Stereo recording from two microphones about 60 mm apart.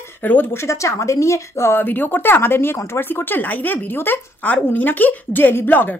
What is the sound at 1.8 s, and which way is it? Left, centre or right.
A woman's voice, left.